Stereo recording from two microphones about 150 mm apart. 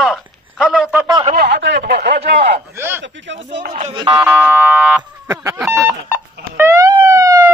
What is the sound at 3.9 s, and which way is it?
Speech, 30° right (ahead or behind).